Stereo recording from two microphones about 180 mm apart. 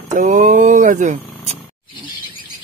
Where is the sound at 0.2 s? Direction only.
45° right (ahead or behind).